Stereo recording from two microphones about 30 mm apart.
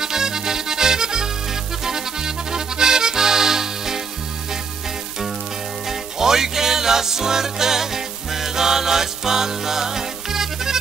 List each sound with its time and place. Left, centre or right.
0.0 s music: centre
1.9 s accordion: centre
5.9 s music: centre